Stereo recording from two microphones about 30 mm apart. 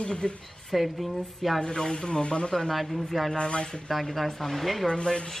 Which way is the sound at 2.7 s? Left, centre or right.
Centre.